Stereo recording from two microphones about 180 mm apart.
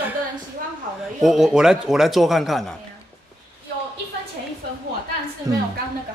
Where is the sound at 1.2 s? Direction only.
Centre (ahead or behind).